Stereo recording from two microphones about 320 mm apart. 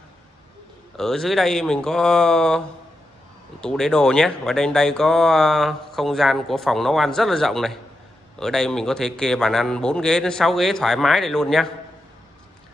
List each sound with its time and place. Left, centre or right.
0.9 s speech: centre
3.6 s speech: centre